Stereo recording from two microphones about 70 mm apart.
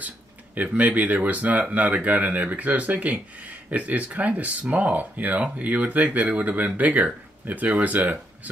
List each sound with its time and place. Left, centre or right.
0.6 s speech: right